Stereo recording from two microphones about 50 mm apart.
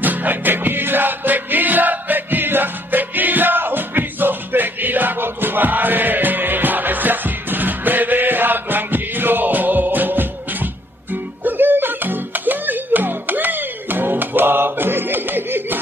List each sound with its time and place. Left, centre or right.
0.0 s music: right